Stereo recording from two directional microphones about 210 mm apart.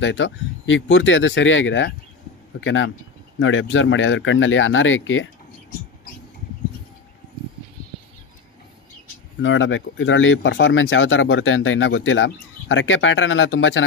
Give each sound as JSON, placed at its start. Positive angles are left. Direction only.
{"t": 0.0, "sound": "speech", "side_deg": 60}
{"t": 9.4, "sound": "speech", "side_deg": 65}